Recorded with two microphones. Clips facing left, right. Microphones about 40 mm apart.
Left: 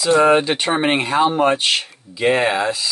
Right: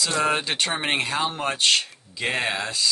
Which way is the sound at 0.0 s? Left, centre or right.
Centre.